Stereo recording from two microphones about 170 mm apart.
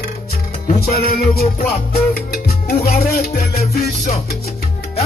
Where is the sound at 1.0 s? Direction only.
65° left (ahead or behind).